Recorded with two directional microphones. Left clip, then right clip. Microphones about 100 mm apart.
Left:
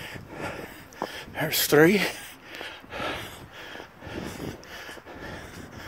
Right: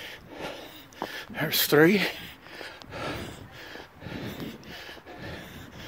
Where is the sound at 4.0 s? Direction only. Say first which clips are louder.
Left 2 dB; 35° right (ahead or behind).